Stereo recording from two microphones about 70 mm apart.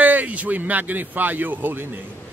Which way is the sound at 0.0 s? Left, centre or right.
Right.